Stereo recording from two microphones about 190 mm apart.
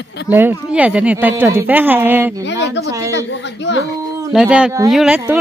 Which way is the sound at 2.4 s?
65° left (ahead or behind).